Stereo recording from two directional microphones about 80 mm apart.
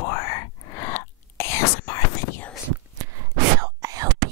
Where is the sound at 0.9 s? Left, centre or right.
Left.